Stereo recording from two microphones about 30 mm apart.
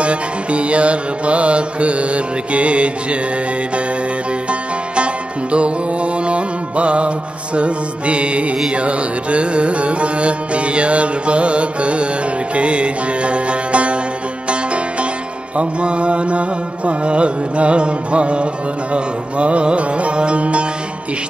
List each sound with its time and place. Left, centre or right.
0.0 s music: right
4.5 s music: right
7.5 s carnatic music: right
12.5 s music: right
15.5 s carnatic music: right
18.9 s music: right